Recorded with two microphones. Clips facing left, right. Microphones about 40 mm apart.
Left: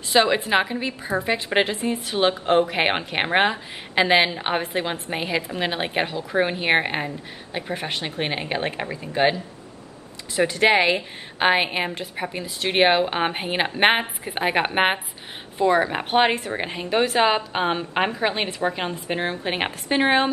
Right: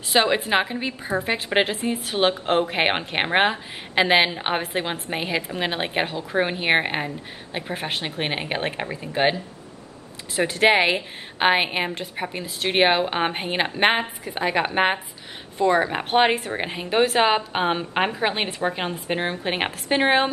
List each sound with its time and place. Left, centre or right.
0.1 s a woman's voice: centre
10.5 s a woman's voice: centre
13.7 s a woman's voice: centre
15.6 s a woman's voice: centre